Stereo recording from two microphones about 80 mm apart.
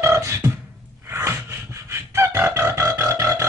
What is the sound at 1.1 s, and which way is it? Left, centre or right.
Music, right.